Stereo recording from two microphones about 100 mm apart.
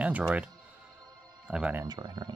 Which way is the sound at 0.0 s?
15° right (ahead or behind).